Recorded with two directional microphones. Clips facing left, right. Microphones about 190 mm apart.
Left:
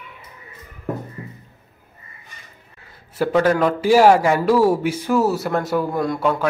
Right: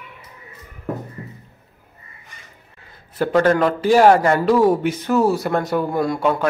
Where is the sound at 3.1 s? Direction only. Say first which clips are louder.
Right 1 dB; 10° left (ahead or behind).